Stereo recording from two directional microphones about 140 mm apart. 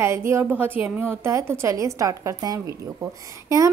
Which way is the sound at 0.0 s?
20° right (ahead or behind).